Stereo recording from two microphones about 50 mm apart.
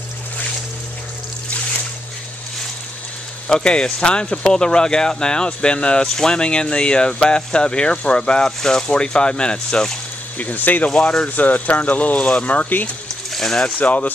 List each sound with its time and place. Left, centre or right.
3.4 s speech: centre
10.3 s speech: left
13.3 s a sound: centre
13.7 s speech: left